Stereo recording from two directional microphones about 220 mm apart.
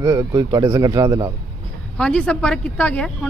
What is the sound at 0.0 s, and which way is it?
Speech, 15° right (ahead or behind).